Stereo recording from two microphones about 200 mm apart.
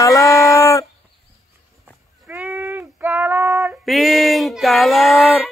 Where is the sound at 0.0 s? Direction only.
15° left (ahead or behind).